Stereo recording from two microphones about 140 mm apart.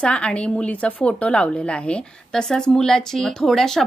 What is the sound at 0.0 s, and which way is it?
A woman's voice, 5° left (ahead or behind).